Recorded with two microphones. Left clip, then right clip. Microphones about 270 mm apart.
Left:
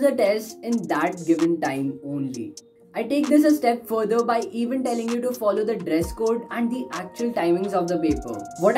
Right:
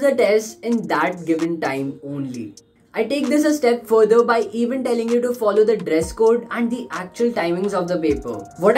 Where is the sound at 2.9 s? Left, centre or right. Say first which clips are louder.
Right 1 dB; centre.